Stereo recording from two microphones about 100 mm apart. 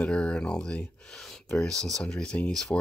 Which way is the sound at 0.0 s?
10° left (ahead or behind).